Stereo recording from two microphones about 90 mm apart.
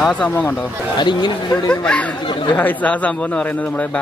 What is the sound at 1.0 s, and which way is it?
Speech, 60° left (ahead or behind).